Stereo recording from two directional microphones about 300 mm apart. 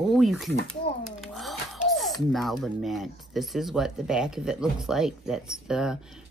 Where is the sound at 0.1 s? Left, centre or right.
Centre.